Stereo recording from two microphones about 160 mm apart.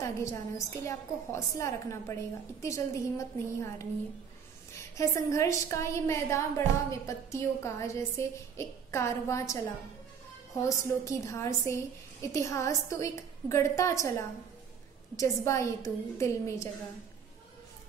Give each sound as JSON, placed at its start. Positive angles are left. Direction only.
{"t": 0.0, "sound": "a woman's voice", "side_deg": 20}
{"t": 15.1, "sound": "a woman's voice", "side_deg": 20}